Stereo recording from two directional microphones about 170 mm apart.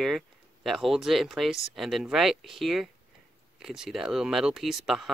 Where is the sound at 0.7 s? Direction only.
Centre (ahead or behind).